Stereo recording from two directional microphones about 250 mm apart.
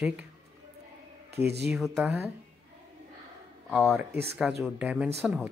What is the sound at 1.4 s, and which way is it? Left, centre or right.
Speech, right.